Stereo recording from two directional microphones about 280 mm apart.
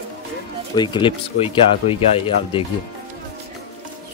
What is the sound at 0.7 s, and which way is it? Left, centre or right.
A man's voice, centre.